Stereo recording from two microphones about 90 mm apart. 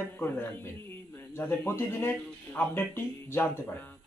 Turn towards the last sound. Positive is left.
turn(degrees=25)  # may be behind; listen again after turning